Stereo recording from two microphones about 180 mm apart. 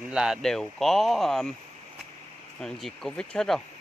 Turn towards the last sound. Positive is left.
turn(degrees=5)  # may be behind; listen again after turning